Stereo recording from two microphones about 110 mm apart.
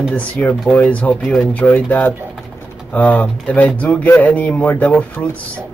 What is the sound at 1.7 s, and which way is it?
Speech, 20° left (ahead or behind).